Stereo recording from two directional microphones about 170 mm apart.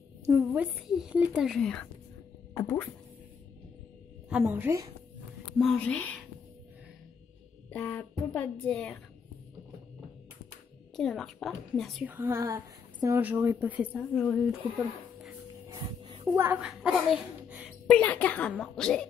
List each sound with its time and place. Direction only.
0.3 s speech: 10° right (ahead or behind)
2.5 s speech: 15° left (ahead or behind)
4.3 s a woman's voice: 10° right (ahead or behind)
5.6 s speech: 5° left (ahead or behind)
7.7 s speech: 10° left (ahead or behind)
11.0 s speech: 5° left (ahead or behind)
12.0 s a woman's voice: 10° right (ahead or behind)
14.1 s speech: 5° left (ahead or behind)
15.7 s music: 30° right (ahead or behind)
16.3 s a child's voice: 10° right (ahead or behind)